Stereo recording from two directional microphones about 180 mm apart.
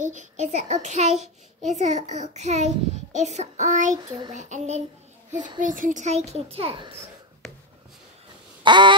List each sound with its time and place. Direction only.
0.0 s a child's voice: 45° right (ahead or behind)
3.9 s child singing: 25° right (ahead or behind)
4.3 s a child's voice: 40° right (ahead or behind)
8.6 s a sound: 25° right (ahead or behind)